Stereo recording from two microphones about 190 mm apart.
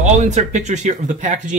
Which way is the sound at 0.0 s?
40° right (ahead or behind).